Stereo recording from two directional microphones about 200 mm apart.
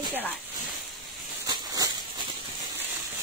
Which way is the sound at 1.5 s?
20° right (ahead or behind).